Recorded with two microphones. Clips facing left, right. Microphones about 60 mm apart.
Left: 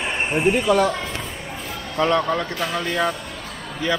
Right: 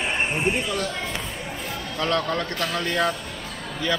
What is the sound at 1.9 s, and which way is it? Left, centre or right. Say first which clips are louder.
Speech: left 5 dB; centre.